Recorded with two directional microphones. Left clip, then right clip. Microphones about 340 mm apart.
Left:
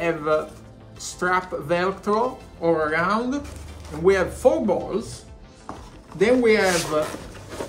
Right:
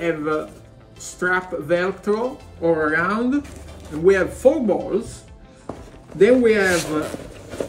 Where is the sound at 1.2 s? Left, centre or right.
Left.